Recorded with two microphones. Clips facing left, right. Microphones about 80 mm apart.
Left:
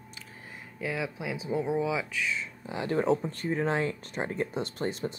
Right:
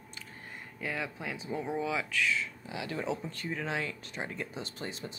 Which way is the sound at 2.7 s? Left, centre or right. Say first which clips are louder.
Left 9 dB; left.